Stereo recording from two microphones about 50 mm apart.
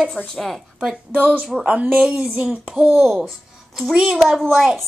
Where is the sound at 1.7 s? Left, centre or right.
Right.